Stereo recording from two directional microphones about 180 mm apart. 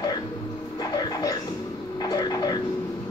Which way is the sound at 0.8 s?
20° left (ahead or behind).